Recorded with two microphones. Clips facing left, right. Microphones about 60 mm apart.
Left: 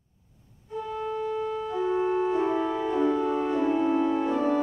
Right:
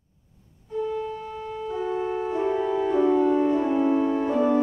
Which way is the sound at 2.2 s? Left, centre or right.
Centre.